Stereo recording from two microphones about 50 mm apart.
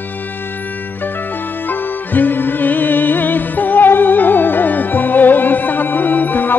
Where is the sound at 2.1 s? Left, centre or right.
Left.